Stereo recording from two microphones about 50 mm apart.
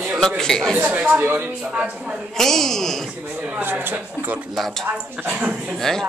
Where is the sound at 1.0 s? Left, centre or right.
Right.